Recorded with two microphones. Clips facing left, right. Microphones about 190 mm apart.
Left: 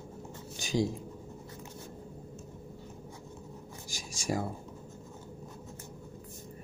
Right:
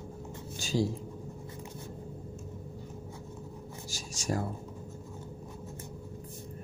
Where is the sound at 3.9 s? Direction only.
10° left (ahead or behind).